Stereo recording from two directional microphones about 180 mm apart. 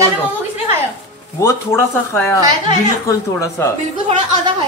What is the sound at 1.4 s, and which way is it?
A man's voice, 15° left (ahead or behind).